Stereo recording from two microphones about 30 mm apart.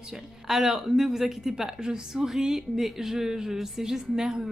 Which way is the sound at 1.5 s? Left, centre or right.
Centre.